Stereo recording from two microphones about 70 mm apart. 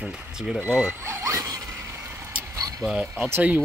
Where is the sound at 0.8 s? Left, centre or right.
Right.